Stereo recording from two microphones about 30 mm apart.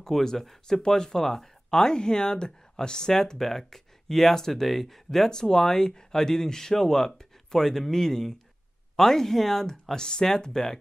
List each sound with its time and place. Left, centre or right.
0.0 s speech: centre
3.3 s speech: centre
5.3 s speech: centre